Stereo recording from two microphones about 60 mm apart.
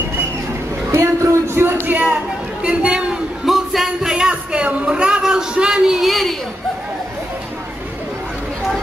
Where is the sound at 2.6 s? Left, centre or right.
Centre.